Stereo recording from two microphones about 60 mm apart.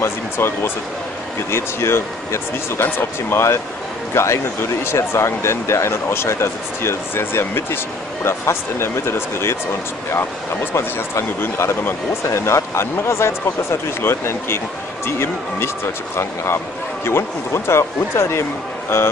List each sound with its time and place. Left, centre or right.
0.0 s speech: left
17.0 s speech: left